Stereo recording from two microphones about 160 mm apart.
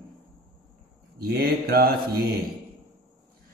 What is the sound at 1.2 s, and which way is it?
Mantra, 75° right (ahead or behind).